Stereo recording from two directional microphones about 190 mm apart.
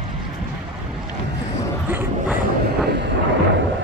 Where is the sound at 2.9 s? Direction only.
65° right (ahead or behind).